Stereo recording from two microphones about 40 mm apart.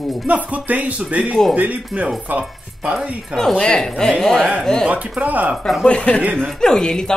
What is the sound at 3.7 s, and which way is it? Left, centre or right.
Speech, centre.